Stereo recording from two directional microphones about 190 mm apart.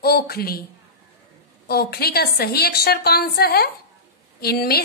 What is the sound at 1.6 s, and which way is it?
A woman's voice, 55° left (ahead or behind).